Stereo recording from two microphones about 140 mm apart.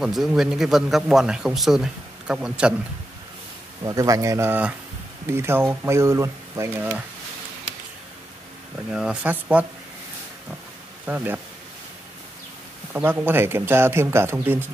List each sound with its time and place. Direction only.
0.0 s speech: centre (ahead or behind)
3.8 s speech: 25° right (ahead or behind)
8.9 s speech: 5° right (ahead or behind)
11.1 s speech: 15° right (ahead or behind)
12.9 s speech: 15° right (ahead or behind)